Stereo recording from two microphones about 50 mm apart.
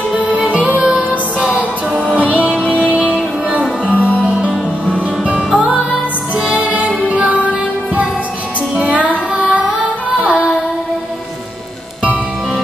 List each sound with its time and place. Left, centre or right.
0.6 s music: right
3.9 s music: left
5.2 s music: centre
6.3 s music: right
8.8 s music: right
10.2 s child singing: right